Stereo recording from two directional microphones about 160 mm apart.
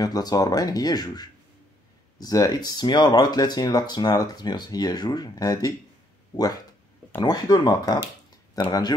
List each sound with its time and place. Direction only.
0.0 s speech: 25° left (ahead or behind)